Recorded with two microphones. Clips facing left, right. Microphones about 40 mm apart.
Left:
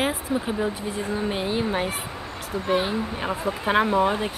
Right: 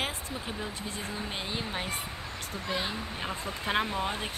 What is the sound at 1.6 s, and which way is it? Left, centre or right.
Speech, left.